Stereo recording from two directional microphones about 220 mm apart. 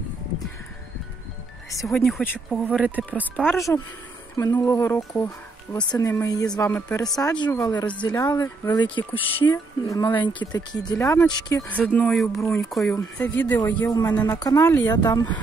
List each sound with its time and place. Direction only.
1.9 s speech: centre (ahead or behind)
4.4 s speech: 20° left (ahead or behind); by 12.4 s centre (ahead or behind)
12.4 s speech: 10° left (ahead or behind)